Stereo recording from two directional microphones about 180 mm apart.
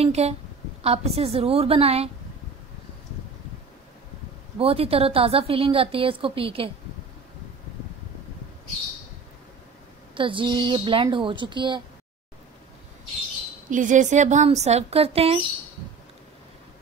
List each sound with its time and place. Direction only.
0.0 s a woman's voice: 35° right (ahead or behind)
4.6 s a woman's voice: 35° right (ahead or behind)
10.1 s a woman's voice: 30° right (ahead or behind)
13.7 s a woman's voice: 45° right (ahead or behind)